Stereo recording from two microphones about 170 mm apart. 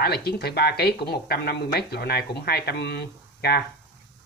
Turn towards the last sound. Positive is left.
turn(degrees=70)  # may be behind; listen again after turning